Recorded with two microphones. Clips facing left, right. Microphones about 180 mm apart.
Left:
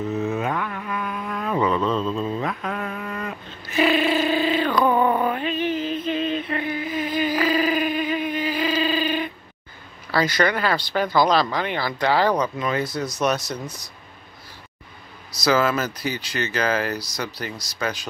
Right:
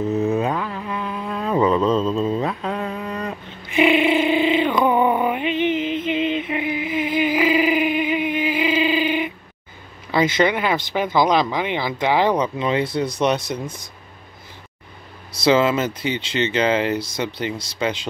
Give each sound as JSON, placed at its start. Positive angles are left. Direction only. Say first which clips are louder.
{"t": 0.1, "sound": "mantra", "louder": "right 5 dB", "side_deg": -35}
{"t": 0.5, "sound": "a sound", "louder": "right 2 dB", "side_deg": -25}
{"t": 2.1, "sound": "mantra", "louder": "right 4 dB", "side_deg": -30}
{"t": 3.8, "sound": "a sound", "louder": "right 3 dB", "side_deg": -20}
{"t": 10.1, "sound": "speech", "louder": "right 3 dB", "side_deg": -25}
{"t": 15.4, "sound": "speech", "louder": "right 4 dB", "side_deg": -25}